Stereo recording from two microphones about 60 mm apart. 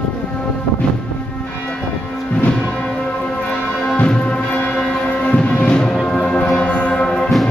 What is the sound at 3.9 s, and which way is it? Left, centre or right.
Music, centre.